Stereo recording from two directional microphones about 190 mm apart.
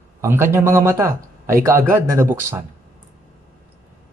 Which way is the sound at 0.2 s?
15° right (ahead or behind).